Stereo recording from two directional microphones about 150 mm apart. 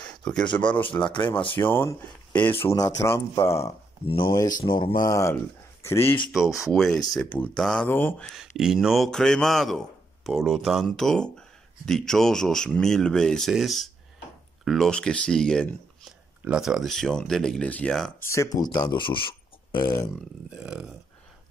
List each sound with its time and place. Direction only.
0.0 s a sound: 5° left (ahead or behind)
0.4 s speech: 30° left (ahead or behind)
1.6 s speech: 15° left (ahead or behind)
4.0 s speech: 35° left (ahead or behind); by 6.1 s 15° left (ahead or behind)
6.7 s a man's voice: centre (ahead or behind)
8.4 s a man's voice: 5° right (ahead or behind)
18.2 s speech: 20° left (ahead or behind)
19.8 s speech: 25° left (ahead or behind)
20.4 s a man's voice: 5° right (ahead or behind)